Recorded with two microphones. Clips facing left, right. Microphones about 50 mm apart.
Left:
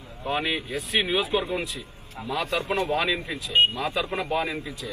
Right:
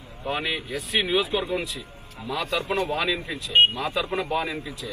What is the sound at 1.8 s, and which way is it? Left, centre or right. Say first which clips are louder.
Speech: left 1 dB; left.